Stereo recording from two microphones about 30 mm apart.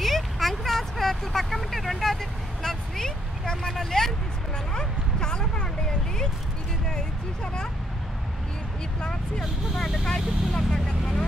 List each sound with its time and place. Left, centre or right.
0.0 s vehicle: centre
1.4 s speech: centre
2.6 s vehicle: centre
3.9 s speech: left
4.7 s bow-wow: left
10.0 s speech: centre